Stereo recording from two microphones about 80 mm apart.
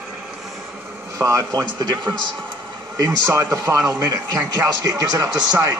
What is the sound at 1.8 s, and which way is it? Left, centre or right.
Speech, right.